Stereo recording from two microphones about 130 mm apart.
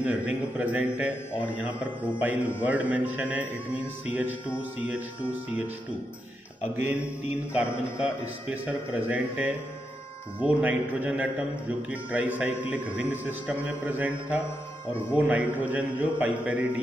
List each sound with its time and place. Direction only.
0.0 s a man's voice: 10° right (ahead or behind)
8.0 s a man's voice: 10° right (ahead or behind)
14.9 s speech: 15° left (ahead or behind)
15.1 s a man's voice: 10° right (ahead or behind)